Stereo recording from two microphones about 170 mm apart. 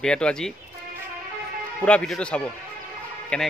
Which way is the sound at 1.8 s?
5° left (ahead or behind).